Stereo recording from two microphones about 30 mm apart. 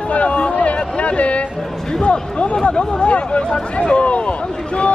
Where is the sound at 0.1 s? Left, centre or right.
Left.